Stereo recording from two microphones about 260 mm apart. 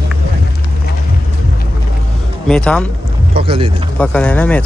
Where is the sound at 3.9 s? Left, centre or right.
Centre.